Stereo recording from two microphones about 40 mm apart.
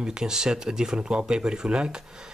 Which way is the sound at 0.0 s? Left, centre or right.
Centre.